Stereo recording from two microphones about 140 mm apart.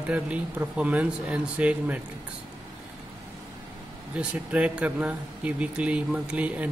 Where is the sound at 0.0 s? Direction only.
10° right (ahead or behind).